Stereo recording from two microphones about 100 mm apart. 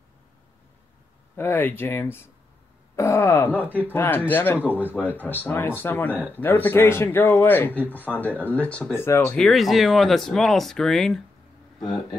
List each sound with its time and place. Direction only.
1.3 s speech: 20° left (ahead or behind)
8.9 s speech: 25° left (ahead or behind)
9.4 s speech: centre (ahead or behind)
11.8 s speech: 40° left (ahead or behind)